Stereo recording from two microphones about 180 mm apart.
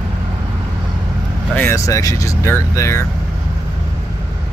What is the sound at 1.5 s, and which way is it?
Speech, 15° left (ahead or behind).